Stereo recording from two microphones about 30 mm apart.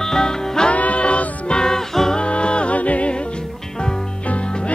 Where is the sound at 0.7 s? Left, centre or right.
Left.